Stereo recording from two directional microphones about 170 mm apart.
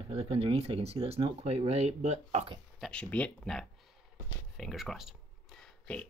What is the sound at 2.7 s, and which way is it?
Speech, 5° left (ahead or behind).